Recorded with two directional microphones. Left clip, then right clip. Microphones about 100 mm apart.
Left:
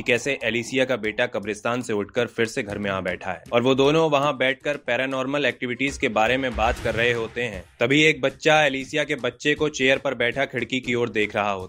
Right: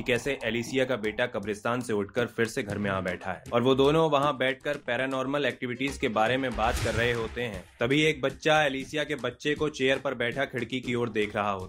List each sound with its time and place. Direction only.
0.0 s speech: 20° left (ahead or behind)
7.8 s speech: 40° left (ahead or behind)